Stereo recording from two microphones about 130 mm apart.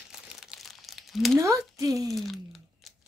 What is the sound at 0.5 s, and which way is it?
Crumpling, centre (ahead or behind).